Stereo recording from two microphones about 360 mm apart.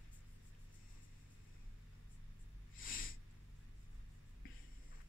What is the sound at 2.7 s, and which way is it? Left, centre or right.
Snort, left.